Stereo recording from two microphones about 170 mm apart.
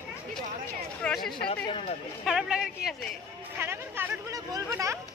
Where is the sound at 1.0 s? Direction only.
5° left (ahead or behind).